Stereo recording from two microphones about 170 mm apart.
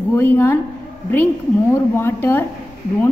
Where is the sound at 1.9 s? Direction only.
15° left (ahead or behind).